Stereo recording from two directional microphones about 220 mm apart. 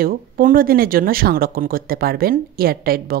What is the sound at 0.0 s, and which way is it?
Speech, 40° right (ahead or behind).